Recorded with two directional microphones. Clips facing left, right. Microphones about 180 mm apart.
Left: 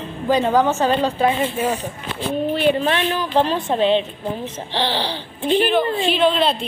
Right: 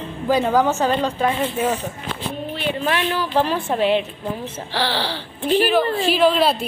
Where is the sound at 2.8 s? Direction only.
20° left (ahead or behind).